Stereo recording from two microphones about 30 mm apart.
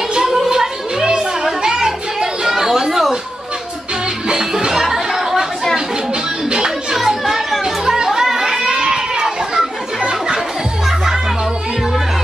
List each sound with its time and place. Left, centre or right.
0.5 s music: right
4.7 s chatter: centre
6.9 s chatter: centre
7.6 s children playing: centre